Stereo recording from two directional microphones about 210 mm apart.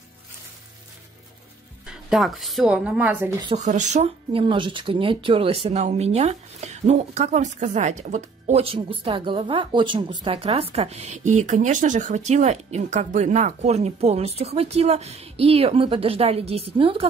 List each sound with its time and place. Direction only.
1.9 s speech: centre (ahead or behind)
3.5 s speech: 35° right (ahead or behind)